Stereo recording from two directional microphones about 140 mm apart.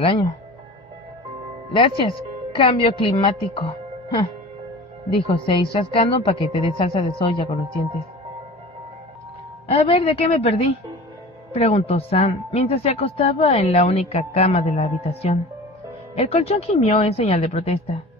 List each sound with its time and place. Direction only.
1.7 s a woman's voice: 40° left (ahead or behind)
9.7 s speech: 45° left (ahead or behind)